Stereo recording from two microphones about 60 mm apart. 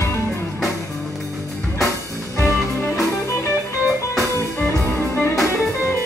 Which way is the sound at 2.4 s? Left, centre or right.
Left.